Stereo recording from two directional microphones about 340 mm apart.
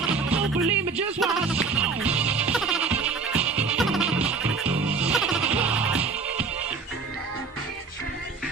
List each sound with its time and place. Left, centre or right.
0.0 s music: centre